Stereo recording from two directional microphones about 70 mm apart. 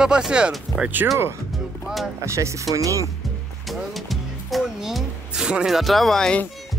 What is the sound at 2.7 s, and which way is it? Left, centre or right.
Speech, right.